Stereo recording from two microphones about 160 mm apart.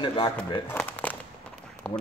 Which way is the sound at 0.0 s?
30° left (ahead or behind).